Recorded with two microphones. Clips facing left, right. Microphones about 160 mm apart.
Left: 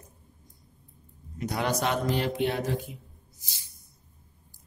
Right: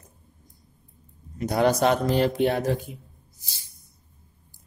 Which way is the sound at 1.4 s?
35° right (ahead or behind).